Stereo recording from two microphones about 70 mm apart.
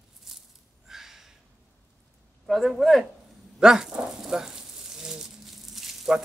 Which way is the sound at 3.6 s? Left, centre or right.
Centre.